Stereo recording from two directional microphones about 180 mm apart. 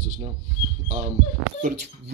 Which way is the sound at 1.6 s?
55° right (ahead or behind).